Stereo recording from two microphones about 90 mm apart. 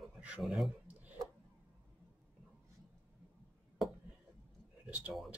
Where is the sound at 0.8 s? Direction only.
20° right (ahead or behind).